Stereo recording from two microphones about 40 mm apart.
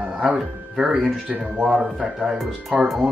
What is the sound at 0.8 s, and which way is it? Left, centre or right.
Speech, centre.